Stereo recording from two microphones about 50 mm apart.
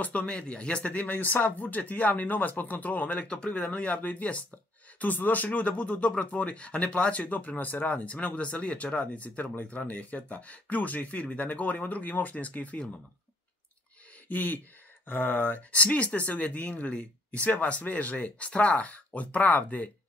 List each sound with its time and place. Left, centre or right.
0.0 s speech: left
14.3 s speech: left